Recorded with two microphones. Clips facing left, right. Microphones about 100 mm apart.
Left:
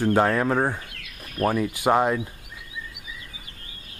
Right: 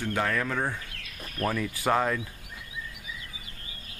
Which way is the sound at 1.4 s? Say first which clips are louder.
Left 6 dB; 25° left (ahead or behind).